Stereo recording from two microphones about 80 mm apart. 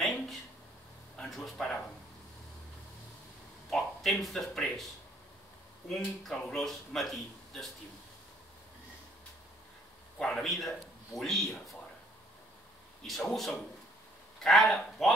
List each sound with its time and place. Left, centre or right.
0.0 s a sound: centre
1.1 s a man's voice: centre
3.7 s speech: centre
5.9 s speech: centre
10.1 s a man's voice: centre
13.0 s speech: centre